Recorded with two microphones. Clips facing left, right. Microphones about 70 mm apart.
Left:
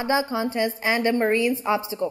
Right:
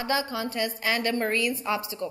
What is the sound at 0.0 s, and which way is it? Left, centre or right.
A woman's voice, left.